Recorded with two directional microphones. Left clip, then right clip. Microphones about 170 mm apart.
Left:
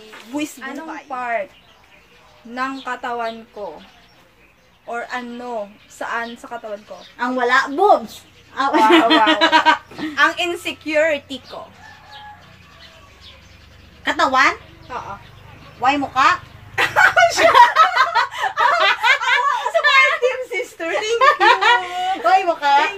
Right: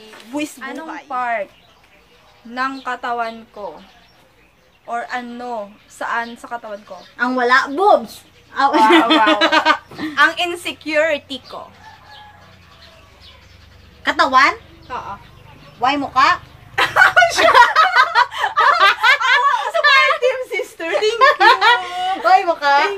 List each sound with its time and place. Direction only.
0.3 s a woman's voice: 10° left (ahead or behind)
2.5 s a woman's voice: 5° left (ahead or behind)
4.9 s a woman's voice: 10° left (ahead or behind)
7.2 s speech: 15° right (ahead or behind)
10.1 s a woman's voice: 10° left (ahead or behind)
14.0 s speech: 10° right (ahead or behind)
15.8 s speech: 10° right (ahead or behind)
16.7 s a sound: 10° left (ahead or behind)
17.4 s snicker: 15° right (ahead or behind)
18.3 s snicker: 10° left (ahead or behind)
18.8 s snicker: 15° right (ahead or behind)
19.8 s a sound: 10° right (ahead or behind)
20.5 s a sound: 5° left (ahead or behind)
21.2 s speech: 10° right (ahead or behind)